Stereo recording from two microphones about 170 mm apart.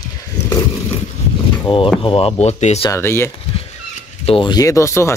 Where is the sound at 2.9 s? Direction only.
15° left (ahead or behind).